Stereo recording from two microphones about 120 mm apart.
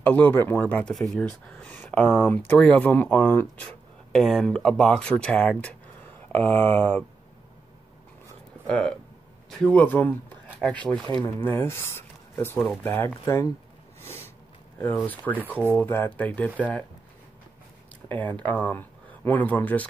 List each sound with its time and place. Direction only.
0.0 s speech: 15° left (ahead or behind)
0.9 s speech: centre (ahead or behind)
1.7 s speech: 15° left (ahead or behind)
8.6 s speech: 10° left (ahead or behind); by 13.5 s 25° left (ahead or behind)
14.8 s speech: 20° left (ahead or behind)
18.0 s speech: 15° left (ahead or behind)